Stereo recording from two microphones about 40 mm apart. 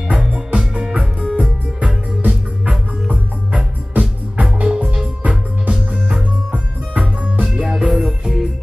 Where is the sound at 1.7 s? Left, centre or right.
Right.